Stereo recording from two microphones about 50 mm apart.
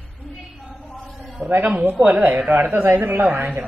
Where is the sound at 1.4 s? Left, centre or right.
Right.